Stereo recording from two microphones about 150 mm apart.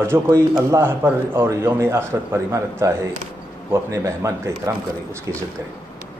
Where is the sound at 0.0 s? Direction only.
15° right (ahead or behind).